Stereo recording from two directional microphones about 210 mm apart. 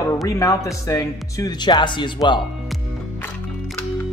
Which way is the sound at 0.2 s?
15° left (ahead or behind).